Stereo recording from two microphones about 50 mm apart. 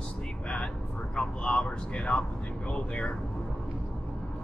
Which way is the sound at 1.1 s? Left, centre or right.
Centre.